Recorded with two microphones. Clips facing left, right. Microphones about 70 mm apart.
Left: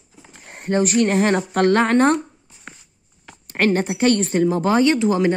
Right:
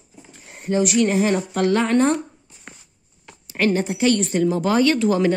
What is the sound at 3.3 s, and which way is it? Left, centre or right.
Speech, left.